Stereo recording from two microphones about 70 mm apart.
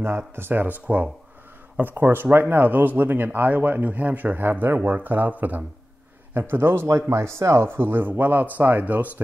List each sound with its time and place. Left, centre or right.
0.4 s a man's voice: right
2.2 s a man's voice: centre
6.5 s speech: right